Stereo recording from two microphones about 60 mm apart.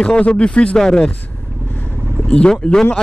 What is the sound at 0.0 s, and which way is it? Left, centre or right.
Speech, centre.